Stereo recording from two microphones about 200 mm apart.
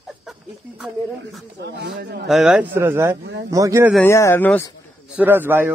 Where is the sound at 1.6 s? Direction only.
60° right (ahead or behind).